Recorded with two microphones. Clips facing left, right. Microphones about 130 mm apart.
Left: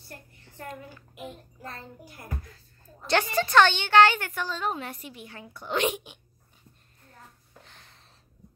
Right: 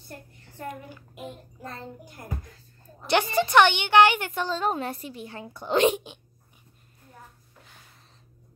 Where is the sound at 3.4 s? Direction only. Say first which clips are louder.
Right 2 dB; 15° right (ahead or behind).